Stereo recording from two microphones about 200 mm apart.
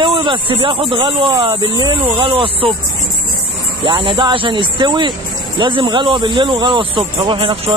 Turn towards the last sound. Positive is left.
turn(degrees=-30)  # may be behind; listen again after turning